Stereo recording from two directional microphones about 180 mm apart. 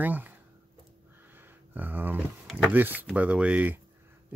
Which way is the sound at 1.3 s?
10° right (ahead or behind).